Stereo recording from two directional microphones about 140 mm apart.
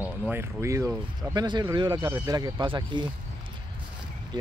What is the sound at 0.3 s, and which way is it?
Speech, 20° right (ahead or behind).